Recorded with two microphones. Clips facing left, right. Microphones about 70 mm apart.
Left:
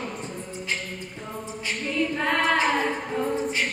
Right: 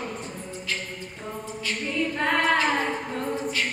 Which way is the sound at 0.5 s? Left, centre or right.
Left.